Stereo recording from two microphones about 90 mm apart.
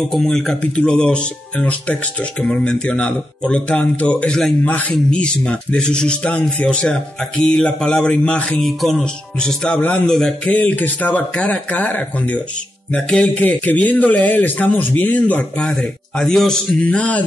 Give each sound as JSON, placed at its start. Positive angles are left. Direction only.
{"t": 0.1, "sound": "speech", "side_deg": 5}
{"t": 4.6, "sound": "speech", "side_deg": 20}
{"t": 8.5, "sound": "music", "side_deg": 0}
{"t": 10.5, "sound": "speech", "side_deg": 15}